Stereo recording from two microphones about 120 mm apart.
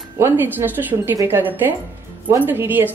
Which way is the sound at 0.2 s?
15° right (ahead or behind).